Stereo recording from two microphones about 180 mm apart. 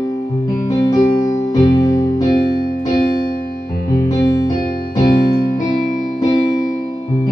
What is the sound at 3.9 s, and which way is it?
Music, 20° left (ahead or behind).